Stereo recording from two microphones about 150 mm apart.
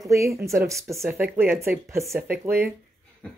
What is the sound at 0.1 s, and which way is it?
Speech, 20° right (ahead or behind).